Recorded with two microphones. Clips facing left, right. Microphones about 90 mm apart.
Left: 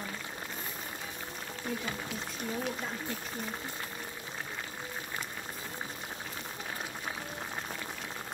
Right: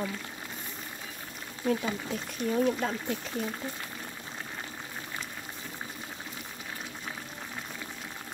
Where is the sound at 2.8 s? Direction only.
90° right.